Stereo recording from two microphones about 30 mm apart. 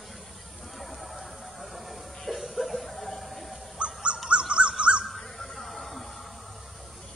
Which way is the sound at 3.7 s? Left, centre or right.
Right.